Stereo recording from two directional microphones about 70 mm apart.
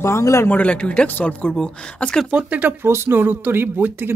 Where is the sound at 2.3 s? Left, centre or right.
Right.